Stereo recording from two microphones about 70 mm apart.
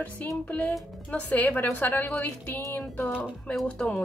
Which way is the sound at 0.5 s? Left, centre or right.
Centre.